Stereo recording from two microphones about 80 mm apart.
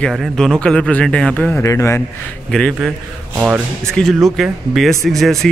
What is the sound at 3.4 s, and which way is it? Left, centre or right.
Speech, centre.